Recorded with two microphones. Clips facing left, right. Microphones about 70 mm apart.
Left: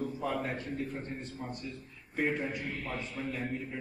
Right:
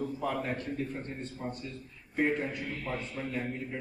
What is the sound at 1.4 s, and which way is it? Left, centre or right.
Speech, centre.